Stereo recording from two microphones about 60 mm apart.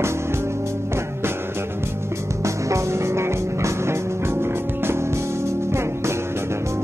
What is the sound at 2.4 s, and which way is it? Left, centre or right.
Music, right.